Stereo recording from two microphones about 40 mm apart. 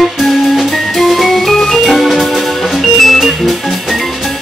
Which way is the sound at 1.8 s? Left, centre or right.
Centre.